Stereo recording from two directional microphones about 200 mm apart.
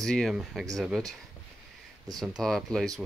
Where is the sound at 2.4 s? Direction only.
Centre (ahead or behind).